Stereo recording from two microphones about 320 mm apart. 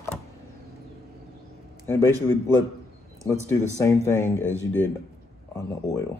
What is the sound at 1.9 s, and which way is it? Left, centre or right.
Speech, centre.